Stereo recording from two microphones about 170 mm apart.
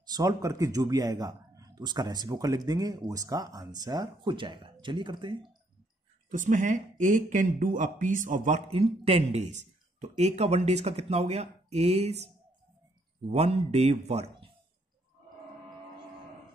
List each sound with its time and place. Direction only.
0.1 s a man's voice: 20° right (ahead or behind)
6.3 s speech: 50° right (ahead or behind)
13.3 s speech: 35° right (ahead or behind)